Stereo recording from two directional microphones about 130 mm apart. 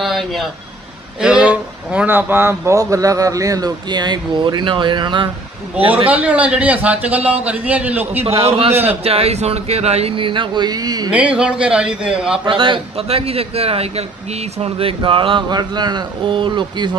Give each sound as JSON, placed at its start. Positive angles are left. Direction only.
{"t": 0.0, "sound": "a man's voice", "side_deg": 0}
{"t": 6.0, "sound": "speech", "side_deg": -10}
{"t": 8.2, "sound": "a man's voice", "side_deg": -50}
{"t": 11.1, "sound": "speech", "side_deg": -10}
{"t": 12.4, "sound": "a man's voice", "side_deg": -40}